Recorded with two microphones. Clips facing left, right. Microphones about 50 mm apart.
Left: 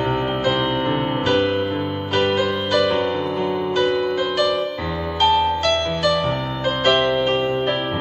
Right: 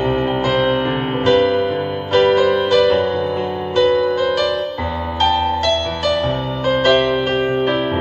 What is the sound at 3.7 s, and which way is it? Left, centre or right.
Music, right.